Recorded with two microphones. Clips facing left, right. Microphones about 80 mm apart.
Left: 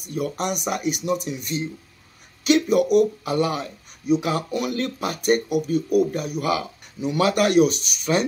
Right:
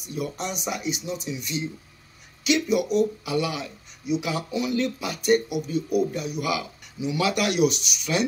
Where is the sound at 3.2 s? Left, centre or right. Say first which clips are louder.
Left 4 dB; left.